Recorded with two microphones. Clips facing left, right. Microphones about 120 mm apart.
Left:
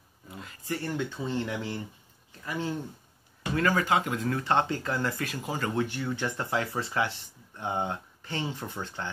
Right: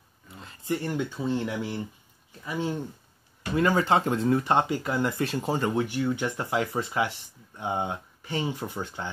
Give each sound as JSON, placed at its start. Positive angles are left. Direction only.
{"t": 0.4, "sound": "a sound", "side_deg": -30}
{"t": 0.7, "sound": "speech", "side_deg": -15}
{"t": 3.8, "sound": "speech", "side_deg": -35}
{"t": 4.4, "sound": "speech", "side_deg": -15}
{"t": 5.2, "sound": "speech", "side_deg": -30}
{"t": 5.7, "sound": "speech", "side_deg": -15}